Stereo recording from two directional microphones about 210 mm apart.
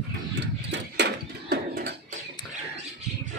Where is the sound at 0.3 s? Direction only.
55° right (ahead or behind).